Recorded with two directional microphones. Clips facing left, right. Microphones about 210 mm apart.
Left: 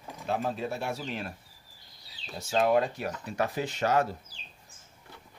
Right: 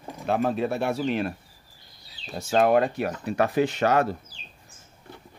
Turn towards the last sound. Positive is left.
turn(degrees=-65)  # may be behind; listen again after turning